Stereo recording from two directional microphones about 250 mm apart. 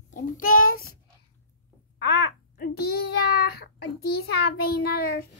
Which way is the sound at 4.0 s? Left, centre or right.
Left.